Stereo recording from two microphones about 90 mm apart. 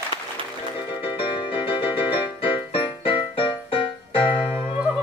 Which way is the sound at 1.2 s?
75° left (ahead or behind).